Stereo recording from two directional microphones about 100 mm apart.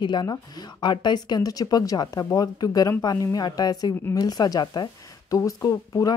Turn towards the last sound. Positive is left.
turn(degrees=30)  # may be behind; listen again after turning